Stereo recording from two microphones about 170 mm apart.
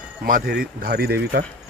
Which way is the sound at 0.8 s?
65° right (ahead or behind).